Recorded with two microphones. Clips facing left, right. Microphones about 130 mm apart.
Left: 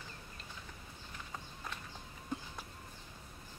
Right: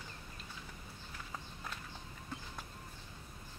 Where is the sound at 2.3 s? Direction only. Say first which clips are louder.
Left 6 dB; 15° left (ahead or behind).